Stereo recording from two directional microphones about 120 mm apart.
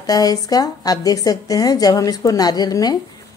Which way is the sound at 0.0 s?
30° left (ahead or behind).